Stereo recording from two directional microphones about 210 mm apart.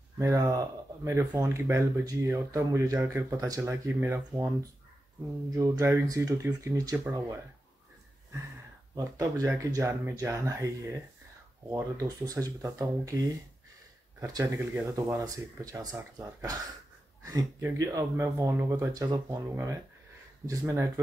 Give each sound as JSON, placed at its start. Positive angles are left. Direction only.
{"t": 0.2, "sound": "speech", "side_deg": -15}
{"t": 8.9, "sound": "speech", "side_deg": -15}
{"t": 14.2, "sound": "speech", "side_deg": -15}